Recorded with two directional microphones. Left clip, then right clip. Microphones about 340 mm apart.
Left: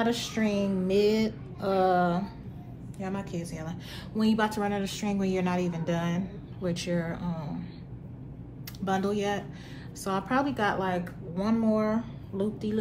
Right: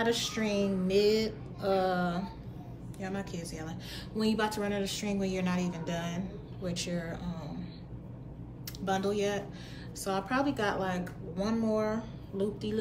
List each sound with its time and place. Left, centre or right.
0.0 s speech: centre
8.8 s speech: centre